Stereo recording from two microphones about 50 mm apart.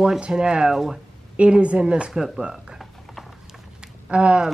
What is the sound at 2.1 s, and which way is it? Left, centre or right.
Speech, centre.